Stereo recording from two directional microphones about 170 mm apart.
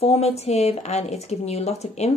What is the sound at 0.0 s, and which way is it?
A woman's voice, 35° left (ahead or behind).